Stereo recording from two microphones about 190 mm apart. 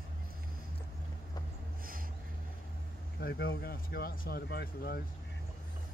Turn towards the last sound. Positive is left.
turn(degrees=55)  # may be behind; listen again after turning